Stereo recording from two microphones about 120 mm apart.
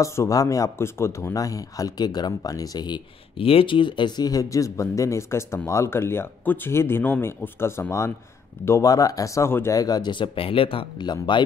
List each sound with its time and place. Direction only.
0.0 s speech: 25° left (ahead or behind)
3.3 s speech: 50° left (ahead or behind)